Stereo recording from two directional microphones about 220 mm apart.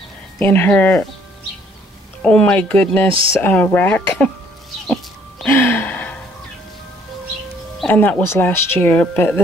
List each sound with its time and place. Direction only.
0.4 s speech: 10° left (ahead or behind)
2.2 s speech: 5° left (ahead or behind)
4.8 s a sound: 5° left (ahead or behind)
7.8 s speech: 5° left (ahead or behind)